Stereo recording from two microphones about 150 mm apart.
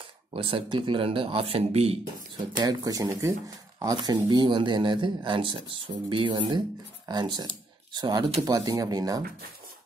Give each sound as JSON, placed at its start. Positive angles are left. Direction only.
{"t": 0.3, "sound": "speech", "side_deg": -35}
{"t": 2.5, "sound": "speech", "side_deg": -25}